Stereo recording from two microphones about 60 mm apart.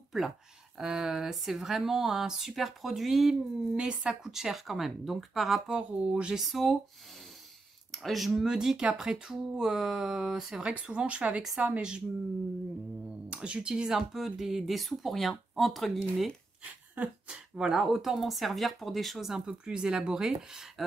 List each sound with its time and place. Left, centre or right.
0.7 s speech: centre
3.7 s speech: centre
4.2 s speech: centre
5.8 s speech: centre
6.5 s speech: centre
7.9 s speech: centre
10.6 s speech: right
13.3 s speech: centre
16.9 s speech: right
17.6 s speech: centre